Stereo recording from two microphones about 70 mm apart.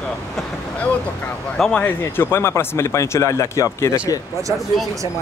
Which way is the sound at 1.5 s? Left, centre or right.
Centre.